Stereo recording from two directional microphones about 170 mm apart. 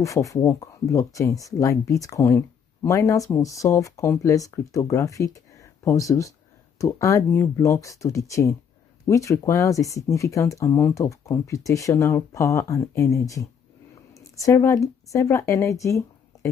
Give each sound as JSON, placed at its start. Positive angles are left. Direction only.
{"t": 0.0, "sound": "a woman's voice", "side_deg": 20}